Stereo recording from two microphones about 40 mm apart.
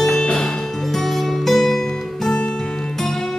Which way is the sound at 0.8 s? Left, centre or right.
Centre.